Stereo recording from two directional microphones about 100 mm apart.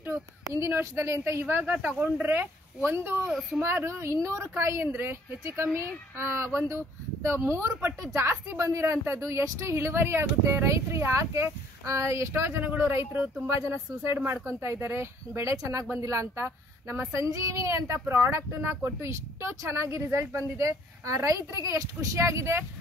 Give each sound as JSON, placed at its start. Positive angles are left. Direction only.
{"t": 0.5, "sound": "a woman's voice", "side_deg": -30}
{"t": 3.3, "sound": "a child's voice", "side_deg": -5}
{"t": 3.6, "sound": "a woman's voice", "side_deg": -25}